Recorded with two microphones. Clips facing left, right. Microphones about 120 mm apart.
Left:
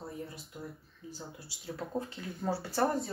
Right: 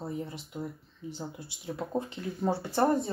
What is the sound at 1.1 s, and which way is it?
Speech, 20° right (ahead or behind).